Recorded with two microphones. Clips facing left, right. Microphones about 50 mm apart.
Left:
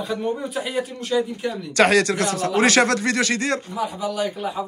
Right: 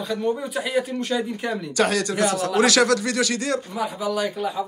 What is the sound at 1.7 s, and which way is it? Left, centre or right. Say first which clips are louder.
Speech: left 5 dB; left.